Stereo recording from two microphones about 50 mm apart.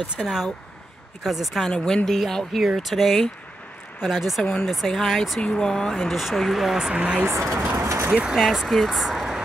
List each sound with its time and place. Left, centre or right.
0.2 s speech: centre
1.2 s speech: centre
4.4 s speech: centre
4.6 s speech: centre
5.4 s speech: centre
5.9 s speech: centre
7.2 s speech: right
7.7 s vehicle: right
8.1 s speech: right
8.4 s speech: centre